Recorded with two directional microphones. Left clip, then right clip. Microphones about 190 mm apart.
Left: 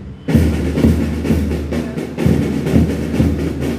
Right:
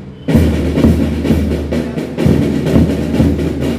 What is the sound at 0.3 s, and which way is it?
Music, 5° left (ahead or behind).